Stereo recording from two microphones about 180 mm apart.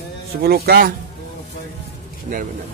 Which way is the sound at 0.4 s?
60° right (ahead or behind).